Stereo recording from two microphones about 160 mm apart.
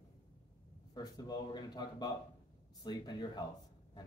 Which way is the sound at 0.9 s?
25° left (ahead or behind).